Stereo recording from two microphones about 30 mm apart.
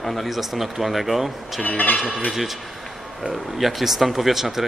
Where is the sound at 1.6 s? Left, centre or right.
Left.